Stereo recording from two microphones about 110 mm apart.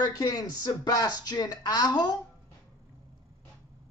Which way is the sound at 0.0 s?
35° left (ahead or behind).